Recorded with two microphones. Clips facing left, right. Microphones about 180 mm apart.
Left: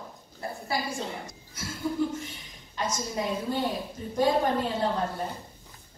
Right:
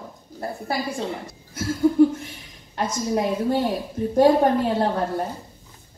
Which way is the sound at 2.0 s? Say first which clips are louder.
Right 13 dB; 60° right (ahead or behind).